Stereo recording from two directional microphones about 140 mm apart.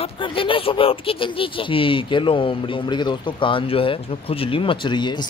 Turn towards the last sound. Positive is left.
turn(degrees=35)  # may be behind; listen again after turning